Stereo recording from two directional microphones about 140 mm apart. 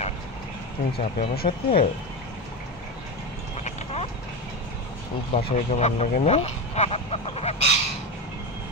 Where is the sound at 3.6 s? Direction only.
50° left (ahead or behind).